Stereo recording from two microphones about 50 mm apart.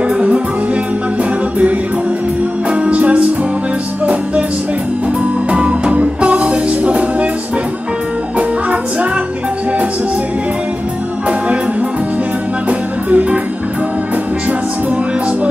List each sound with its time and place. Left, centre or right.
2.7 s music: right
5.5 s music: right
12.6 s music: right